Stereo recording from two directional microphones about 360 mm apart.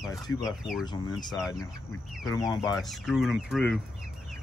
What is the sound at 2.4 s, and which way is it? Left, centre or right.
Speech, centre.